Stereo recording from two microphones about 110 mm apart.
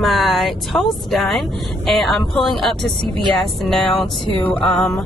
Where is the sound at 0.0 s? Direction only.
Centre (ahead or behind).